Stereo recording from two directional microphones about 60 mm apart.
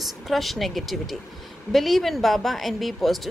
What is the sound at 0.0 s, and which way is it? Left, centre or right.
Speech, centre.